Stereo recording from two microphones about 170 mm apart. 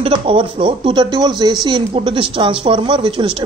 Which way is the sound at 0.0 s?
30° right (ahead or behind).